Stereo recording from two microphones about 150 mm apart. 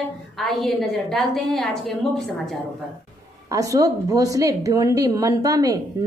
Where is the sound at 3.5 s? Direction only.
20° right (ahead or behind).